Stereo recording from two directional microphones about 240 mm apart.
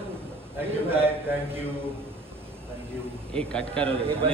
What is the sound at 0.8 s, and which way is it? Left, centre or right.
Speech, centre.